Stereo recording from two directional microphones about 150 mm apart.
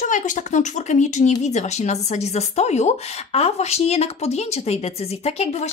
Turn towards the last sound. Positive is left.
turn(degrees=45)  # may be behind; listen again after turning